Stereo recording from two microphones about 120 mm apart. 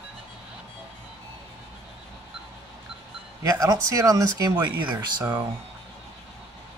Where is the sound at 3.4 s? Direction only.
30° right (ahead or behind).